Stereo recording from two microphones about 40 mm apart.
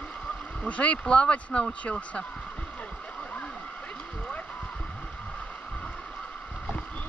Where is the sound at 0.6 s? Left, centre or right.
Left.